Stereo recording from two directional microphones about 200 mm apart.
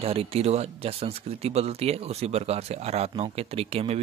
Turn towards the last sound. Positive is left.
turn(degrees=-30)  # may be behind; listen again after turning